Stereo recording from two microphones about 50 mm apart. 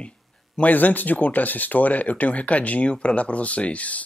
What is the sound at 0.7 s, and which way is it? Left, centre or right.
Speech, left.